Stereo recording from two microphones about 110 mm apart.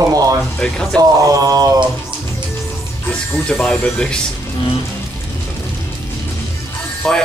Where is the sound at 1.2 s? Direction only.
35° right (ahead or behind).